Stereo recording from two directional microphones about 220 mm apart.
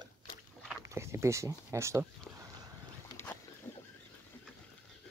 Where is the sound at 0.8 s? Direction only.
15° right (ahead or behind).